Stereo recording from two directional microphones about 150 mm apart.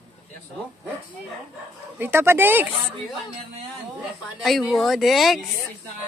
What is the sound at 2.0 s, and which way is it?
Speech, 15° right (ahead or behind).